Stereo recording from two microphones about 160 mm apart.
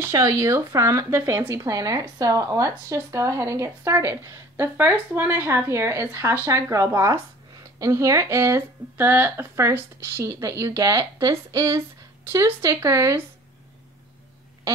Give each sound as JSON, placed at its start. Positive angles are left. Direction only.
{"t": 0.0, "sound": "speech", "side_deg": -20}